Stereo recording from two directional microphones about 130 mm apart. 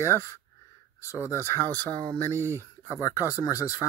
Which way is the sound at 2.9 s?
25° left (ahead or behind).